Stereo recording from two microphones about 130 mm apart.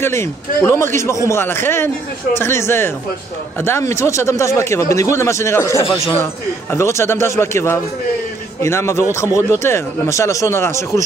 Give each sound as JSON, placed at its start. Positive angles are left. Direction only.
{"t": 0.0, "sound": "speech", "side_deg": 20}